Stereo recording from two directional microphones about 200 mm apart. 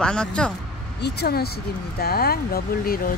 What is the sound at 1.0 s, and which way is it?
Speech, 55° left (ahead or behind).